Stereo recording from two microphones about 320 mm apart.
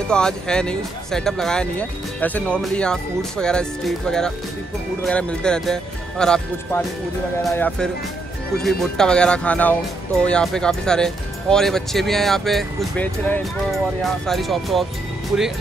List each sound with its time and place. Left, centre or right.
0.1 s speech: centre